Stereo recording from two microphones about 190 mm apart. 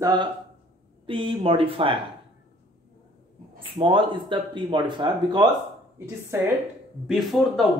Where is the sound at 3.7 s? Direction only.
25° right (ahead or behind).